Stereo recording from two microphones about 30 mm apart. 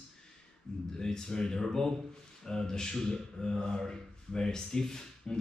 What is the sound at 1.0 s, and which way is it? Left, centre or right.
A man's voice, centre.